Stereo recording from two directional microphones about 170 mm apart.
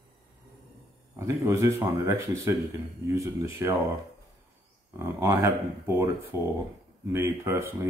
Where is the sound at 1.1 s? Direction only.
15° right (ahead or behind).